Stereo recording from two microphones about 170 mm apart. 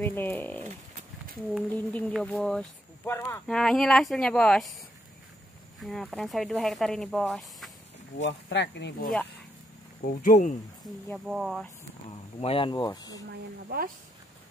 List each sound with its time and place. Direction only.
0.0 s speech: 10° left (ahead or behind)
1.8 s speech: 10° left (ahead or behind)
3.4 s speech: 5° left (ahead or behind)
5.8 s speech: centre (ahead or behind)
8.2 s speech: 90° left
10.0 s speech: 55° left (ahead or behind)
10.8 s speech: centre (ahead or behind)
12.4 s speech: 35° left (ahead or behind)
13.3 s speech: 65° right (ahead or behind)